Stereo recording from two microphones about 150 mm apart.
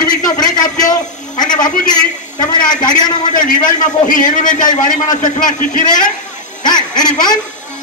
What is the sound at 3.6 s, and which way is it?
A man's voice, 60° left (ahead or behind).